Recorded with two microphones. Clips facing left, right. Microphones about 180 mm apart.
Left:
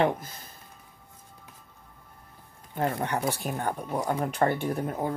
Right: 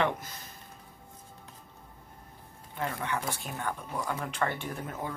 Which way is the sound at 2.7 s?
40° left (ahead or behind).